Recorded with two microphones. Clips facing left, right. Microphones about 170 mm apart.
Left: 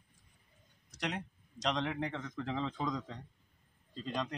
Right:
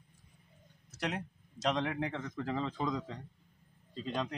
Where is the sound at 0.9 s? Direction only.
5° right (ahead or behind).